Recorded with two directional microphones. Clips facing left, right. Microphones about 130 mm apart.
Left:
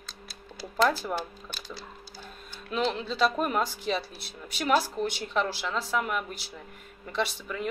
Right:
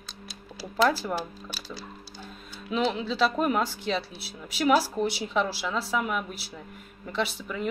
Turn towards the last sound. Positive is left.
turn(degrees=0)  # may be behind; listen again after turning